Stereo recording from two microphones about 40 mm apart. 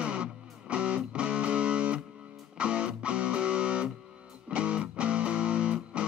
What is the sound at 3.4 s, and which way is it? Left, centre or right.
Music, right.